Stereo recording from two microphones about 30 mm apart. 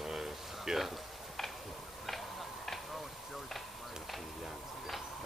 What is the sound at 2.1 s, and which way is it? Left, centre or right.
Tick-tock, centre.